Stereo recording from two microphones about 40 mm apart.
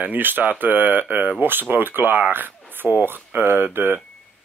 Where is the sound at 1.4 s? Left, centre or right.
Right.